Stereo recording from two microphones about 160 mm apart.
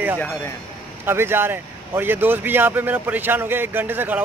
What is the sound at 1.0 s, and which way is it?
Speech, 15° right (ahead or behind).